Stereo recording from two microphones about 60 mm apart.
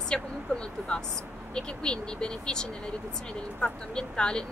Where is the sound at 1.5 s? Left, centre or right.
Centre.